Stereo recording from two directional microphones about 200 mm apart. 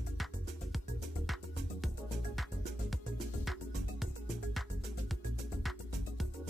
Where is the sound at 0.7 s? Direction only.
Centre (ahead or behind).